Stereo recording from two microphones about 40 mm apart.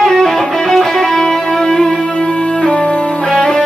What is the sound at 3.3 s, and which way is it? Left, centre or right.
Music, centre.